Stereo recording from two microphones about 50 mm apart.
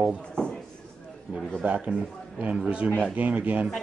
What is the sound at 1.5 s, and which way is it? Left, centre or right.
Speech, right.